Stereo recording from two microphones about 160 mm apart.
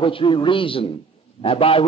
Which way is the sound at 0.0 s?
30° left (ahead or behind).